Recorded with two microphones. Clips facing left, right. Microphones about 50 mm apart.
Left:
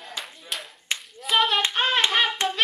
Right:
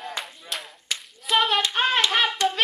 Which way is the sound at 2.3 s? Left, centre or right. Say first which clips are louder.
Right 2 dB; left.